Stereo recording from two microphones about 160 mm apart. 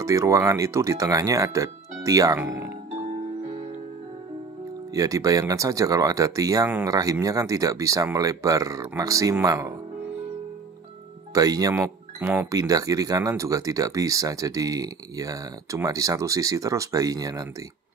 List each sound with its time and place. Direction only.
0.0 s speech: 20° right (ahead or behind)
4.9 s speech: 20° right (ahead or behind)
11.3 s speech: 25° right (ahead or behind)